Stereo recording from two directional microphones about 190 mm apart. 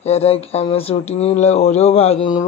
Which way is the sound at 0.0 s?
30° left (ahead or behind).